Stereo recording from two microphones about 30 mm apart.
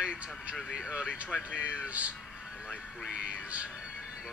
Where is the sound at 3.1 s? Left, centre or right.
Right.